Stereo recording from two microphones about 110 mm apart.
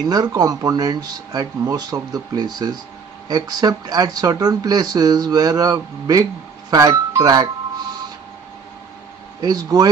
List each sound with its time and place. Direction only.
0.1 s speech: 35° right (ahead or behind)
9.4 s speech: 35° right (ahead or behind)